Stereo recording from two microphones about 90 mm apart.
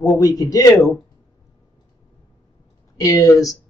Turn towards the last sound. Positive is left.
turn(degrees=40)  # may be behind; listen again after turning